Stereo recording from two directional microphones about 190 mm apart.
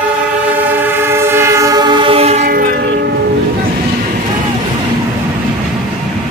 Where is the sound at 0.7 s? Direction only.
10° right (ahead or behind); by 2.5 s 35° right (ahead or behind).